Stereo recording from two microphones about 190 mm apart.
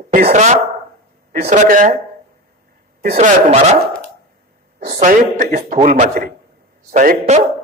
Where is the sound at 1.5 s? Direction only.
45° right (ahead or behind).